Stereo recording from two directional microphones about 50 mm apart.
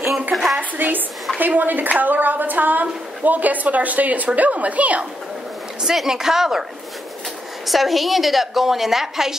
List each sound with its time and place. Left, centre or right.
0.3 s a woman's voice: centre
0.6 s a woman's voice: right
5.9 s speech: centre
7.6 s a woman's voice: centre